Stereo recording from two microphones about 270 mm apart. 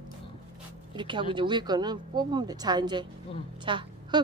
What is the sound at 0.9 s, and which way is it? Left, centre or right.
Speech, centre.